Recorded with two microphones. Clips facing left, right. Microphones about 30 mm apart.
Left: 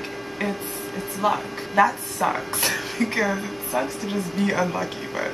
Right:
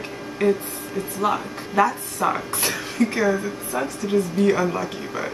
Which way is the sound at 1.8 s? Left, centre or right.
Left.